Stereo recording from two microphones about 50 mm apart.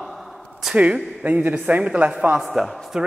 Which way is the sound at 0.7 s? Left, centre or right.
Right.